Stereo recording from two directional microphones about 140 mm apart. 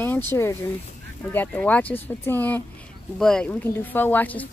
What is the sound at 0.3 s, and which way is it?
Speech, 15° left (ahead or behind).